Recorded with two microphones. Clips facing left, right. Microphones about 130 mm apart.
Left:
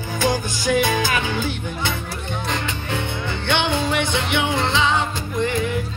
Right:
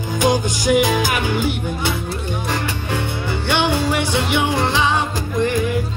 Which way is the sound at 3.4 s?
10° right (ahead or behind).